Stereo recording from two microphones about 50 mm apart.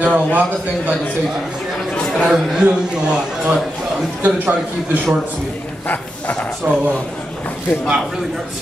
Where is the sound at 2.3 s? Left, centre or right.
Centre.